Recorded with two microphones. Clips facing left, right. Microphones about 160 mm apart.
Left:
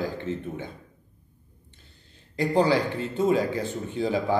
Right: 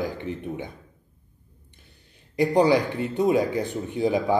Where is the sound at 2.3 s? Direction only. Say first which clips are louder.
Right 3 dB; 15° right (ahead or behind).